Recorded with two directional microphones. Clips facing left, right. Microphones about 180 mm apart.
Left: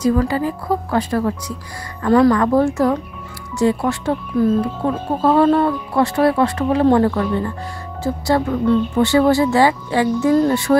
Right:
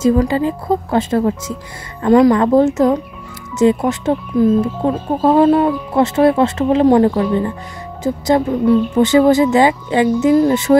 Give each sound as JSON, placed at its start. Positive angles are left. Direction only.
{"t": 0.0, "sound": "speech", "side_deg": -20}